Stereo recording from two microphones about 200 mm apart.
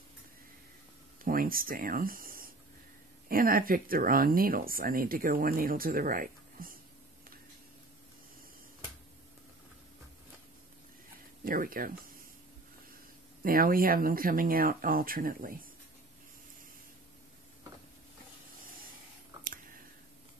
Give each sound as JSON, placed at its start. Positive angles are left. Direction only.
{"t": 1.2, "sound": "speech", "side_deg": -45}
{"t": 11.4, "sound": "speech", "side_deg": -45}
{"t": 13.4, "sound": "speech", "side_deg": -45}